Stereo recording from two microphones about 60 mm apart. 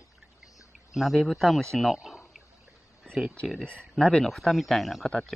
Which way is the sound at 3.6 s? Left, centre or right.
Centre.